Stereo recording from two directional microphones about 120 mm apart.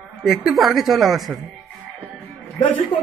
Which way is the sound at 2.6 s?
45° left (ahead or behind).